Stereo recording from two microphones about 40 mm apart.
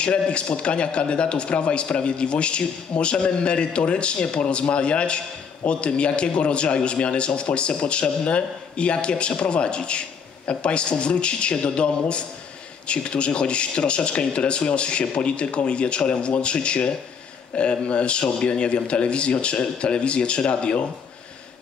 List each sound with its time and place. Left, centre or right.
0.0 s a man's voice: left